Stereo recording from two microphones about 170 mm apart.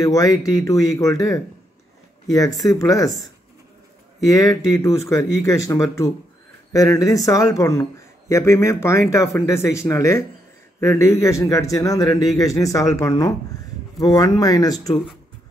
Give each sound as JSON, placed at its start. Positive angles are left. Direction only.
{"t": 0.0, "sound": "speech", "side_deg": 20}
{"t": 4.3, "sound": "speech", "side_deg": 20}